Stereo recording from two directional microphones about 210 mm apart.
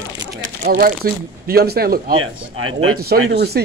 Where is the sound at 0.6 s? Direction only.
45° right (ahead or behind).